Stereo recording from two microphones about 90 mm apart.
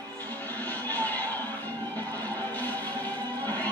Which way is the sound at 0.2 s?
20° left (ahead or behind).